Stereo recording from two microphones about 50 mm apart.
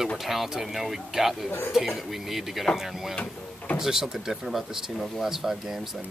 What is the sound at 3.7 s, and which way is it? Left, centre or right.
Speech, centre.